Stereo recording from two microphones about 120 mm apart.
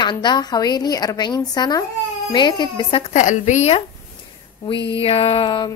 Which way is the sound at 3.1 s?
90° left.